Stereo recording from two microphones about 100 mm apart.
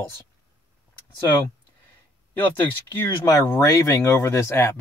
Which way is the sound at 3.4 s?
30° left (ahead or behind).